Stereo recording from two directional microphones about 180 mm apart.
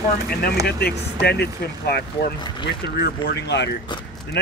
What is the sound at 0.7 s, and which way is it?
Speech, 65° left (ahead or behind).